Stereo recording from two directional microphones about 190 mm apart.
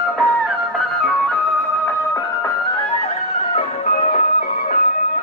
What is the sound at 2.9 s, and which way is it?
Music, 35° left (ahead or behind).